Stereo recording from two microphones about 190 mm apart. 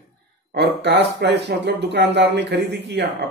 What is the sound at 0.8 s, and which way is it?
Speech, 65° right (ahead or behind).